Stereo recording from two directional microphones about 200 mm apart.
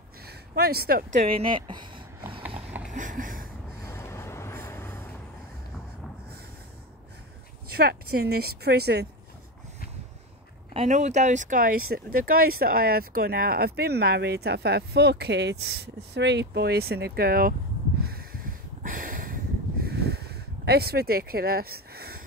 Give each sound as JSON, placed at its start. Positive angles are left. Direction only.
{"t": 0.3, "sound": "speech", "side_deg": -50}
{"t": 1.2, "sound": "speech", "side_deg": -25}
{"t": 2.9, "sound": "a sound", "side_deg": -40}
{"t": 3.9, "sound": "vehicle", "side_deg": 15}
{"t": 7.7, "sound": "speech", "side_deg": -50}
{"t": 10.7, "sound": "speech", "side_deg": -30}
{"t": 18.0, "sound": "a sound", "side_deg": -50}